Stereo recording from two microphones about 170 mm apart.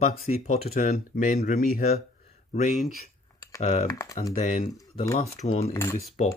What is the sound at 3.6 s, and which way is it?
Speech, 40° left (ahead or behind).